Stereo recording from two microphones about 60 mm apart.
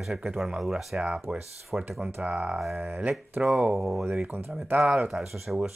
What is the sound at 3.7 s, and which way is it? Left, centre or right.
Speech, centre.